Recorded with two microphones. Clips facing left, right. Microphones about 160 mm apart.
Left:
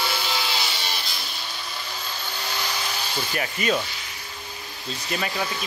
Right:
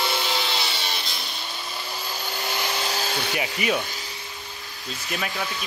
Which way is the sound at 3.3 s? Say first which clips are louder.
Left 2 dB; 15° right (ahead or behind).